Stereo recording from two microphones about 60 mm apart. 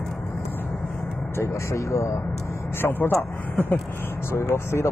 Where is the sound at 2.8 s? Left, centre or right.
Left.